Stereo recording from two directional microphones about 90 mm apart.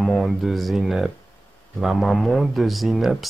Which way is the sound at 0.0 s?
Centre (ahead or behind).